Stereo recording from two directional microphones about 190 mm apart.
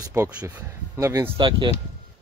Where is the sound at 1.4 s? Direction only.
25° right (ahead or behind).